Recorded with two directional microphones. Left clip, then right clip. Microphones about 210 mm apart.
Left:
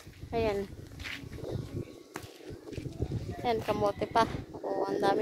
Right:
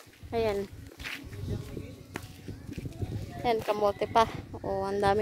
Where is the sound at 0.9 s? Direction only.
15° right (ahead or behind).